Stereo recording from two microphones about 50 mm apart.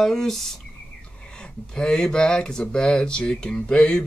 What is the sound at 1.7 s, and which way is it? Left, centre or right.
Speech, centre.